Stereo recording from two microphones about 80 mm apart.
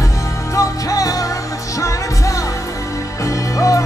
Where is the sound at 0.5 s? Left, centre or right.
Left.